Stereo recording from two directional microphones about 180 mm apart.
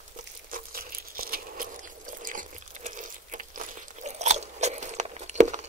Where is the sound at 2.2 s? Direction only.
45° right (ahead or behind).